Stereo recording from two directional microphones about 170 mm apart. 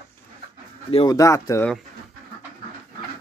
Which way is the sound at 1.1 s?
20° left (ahead or behind).